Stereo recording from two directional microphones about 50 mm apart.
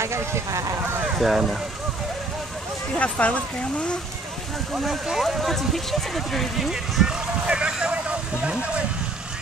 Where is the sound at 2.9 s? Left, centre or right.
Left.